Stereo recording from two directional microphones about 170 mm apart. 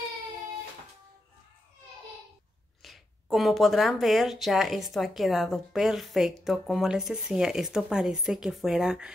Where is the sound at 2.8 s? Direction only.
Centre (ahead or behind).